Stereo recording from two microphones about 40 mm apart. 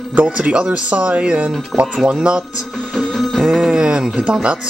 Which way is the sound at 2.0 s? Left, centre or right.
Right.